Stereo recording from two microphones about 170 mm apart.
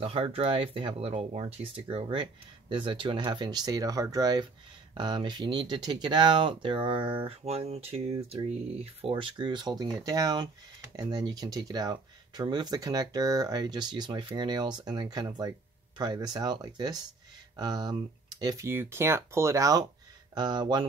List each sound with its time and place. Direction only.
0.0 s speech: 35° right (ahead or behind)
9.0 s speech: 30° right (ahead or behind)